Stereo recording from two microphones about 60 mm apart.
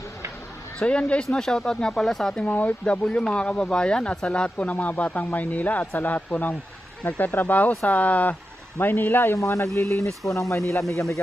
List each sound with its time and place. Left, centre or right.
0.8 s speech: centre
2.3 s speech: left
9.3 s speech: left